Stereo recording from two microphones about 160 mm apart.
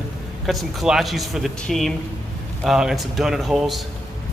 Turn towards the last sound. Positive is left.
turn(degrees=0)  # may be behind; listen again after turning